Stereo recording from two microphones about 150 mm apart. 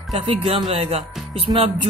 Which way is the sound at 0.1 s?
40° right (ahead or behind).